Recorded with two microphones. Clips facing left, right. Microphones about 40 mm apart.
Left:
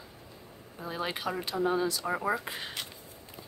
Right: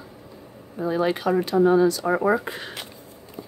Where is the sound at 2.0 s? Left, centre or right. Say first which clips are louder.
Right 9 dB; centre.